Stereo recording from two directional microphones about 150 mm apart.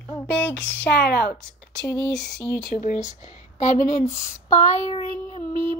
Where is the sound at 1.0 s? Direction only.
90° left.